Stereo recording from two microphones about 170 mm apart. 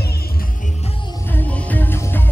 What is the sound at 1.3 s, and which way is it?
Music, 10° left (ahead or behind).